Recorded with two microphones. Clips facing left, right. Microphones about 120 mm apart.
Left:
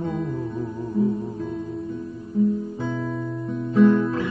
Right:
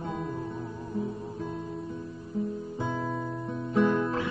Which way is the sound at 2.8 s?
15° right (ahead or behind).